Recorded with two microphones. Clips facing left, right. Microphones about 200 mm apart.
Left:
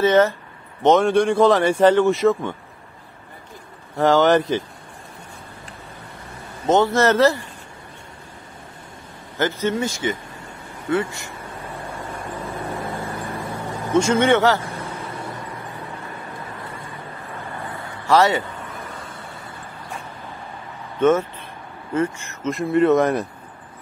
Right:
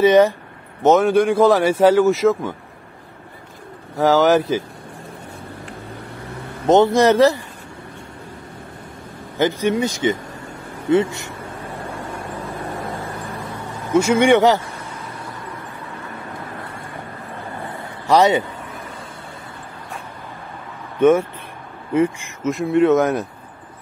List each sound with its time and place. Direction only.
0.0 s speech: 15° right (ahead or behind)
0.8 s speech: 5° right (ahead or behind)
4.0 s speech: 5° right (ahead or behind)
6.7 s speech: 15° right (ahead or behind)
9.4 s speech: 15° right (ahead or behind)
13.6 s vehicle: 10° left (ahead or behind)
13.9 s speech: 10° right (ahead or behind)
14.8 s vehicle: 30° left (ahead or behind)
18.0 s speech: 20° right (ahead or behind)
21.0 s speech: 10° right (ahead or behind)
22.5 s speech: centre (ahead or behind)